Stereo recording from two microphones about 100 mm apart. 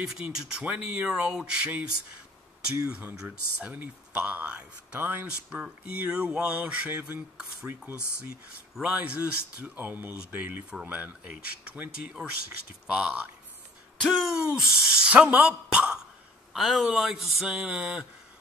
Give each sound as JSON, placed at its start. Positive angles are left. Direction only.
{"t": 0.0, "sound": "speech", "side_deg": -5}
{"t": 2.9, "sound": "speech", "side_deg": -15}
{"t": 9.6, "sound": "speech", "side_deg": -20}
{"t": 14.0, "sound": "a sound", "side_deg": 0}
{"t": 15.1, "sound": "speech", "side_deg": -15}